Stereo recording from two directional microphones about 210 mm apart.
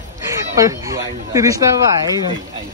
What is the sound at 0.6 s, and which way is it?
Speech, 15° right (ahead or behind).